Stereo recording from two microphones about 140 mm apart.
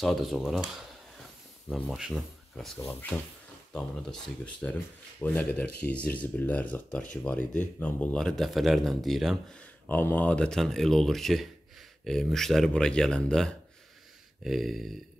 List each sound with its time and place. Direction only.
0.0 s speech: centre (ahead or behind)
2.8 s speech: 15° left (ahead or behind)
3.7 s speech: 5° left (ahead or behind)